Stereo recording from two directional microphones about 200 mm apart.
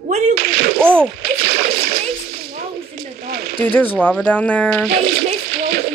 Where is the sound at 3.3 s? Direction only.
50° right (ahead or behind).